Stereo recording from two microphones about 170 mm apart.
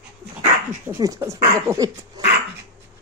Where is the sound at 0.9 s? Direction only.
20° right (ahead or behind).